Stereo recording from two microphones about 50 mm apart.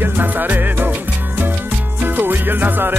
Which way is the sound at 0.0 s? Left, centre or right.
Right.